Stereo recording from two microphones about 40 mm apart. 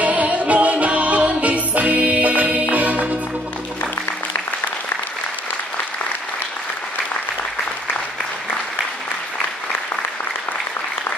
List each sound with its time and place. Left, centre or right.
0.0 s music: right